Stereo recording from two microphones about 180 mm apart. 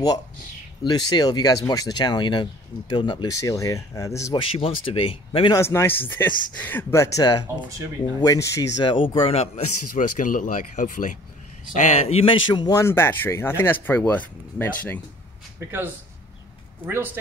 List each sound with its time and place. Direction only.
0.8 s speech: 25° left (ahead or behind)
4.4 s speech: 30° left (ahead or behind)
5.6 s speech: 15° left (ahead or behind); by 9.5 s 30° left (ahead or behind)
9.9 s speech: 45° left (ahead or behind)
12.5 s speech: 20° left (ahead or behind)
16.8 s speech: 10° right (ahead or behind)